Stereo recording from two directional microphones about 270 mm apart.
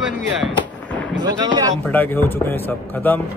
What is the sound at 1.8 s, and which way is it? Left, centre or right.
Speech, centre.